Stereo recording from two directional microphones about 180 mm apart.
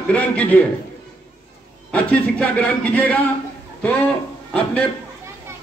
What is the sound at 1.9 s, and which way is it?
A man's voice, 5° left (ahead or behind).